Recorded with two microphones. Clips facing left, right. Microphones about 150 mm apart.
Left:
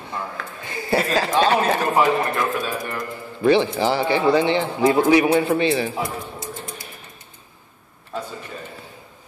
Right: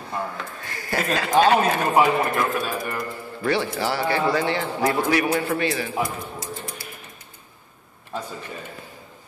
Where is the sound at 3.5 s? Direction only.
20° left (ahead or behind).